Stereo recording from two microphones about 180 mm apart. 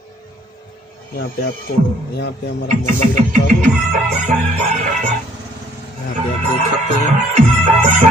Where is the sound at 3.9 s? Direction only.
45° right (ahead or behind).